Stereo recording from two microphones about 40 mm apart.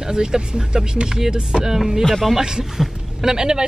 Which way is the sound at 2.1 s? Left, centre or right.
Centre.